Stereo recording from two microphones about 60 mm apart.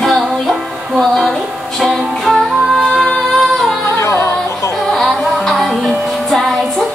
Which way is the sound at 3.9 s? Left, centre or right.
Left.